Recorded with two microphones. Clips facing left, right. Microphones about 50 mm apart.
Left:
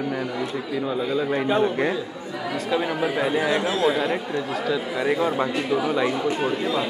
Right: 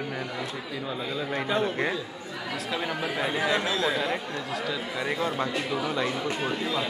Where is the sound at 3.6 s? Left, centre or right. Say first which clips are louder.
Left 5 dB; left.